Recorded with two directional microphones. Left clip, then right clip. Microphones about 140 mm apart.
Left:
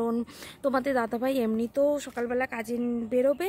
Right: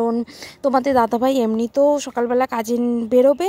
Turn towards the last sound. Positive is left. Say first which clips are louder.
# right 10 dB
turn(degrees=-45)  # may be behind; listen again after turning